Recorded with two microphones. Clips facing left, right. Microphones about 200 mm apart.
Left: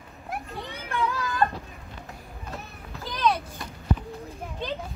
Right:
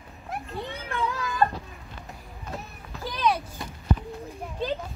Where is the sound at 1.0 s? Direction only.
15° right (ahead or behind).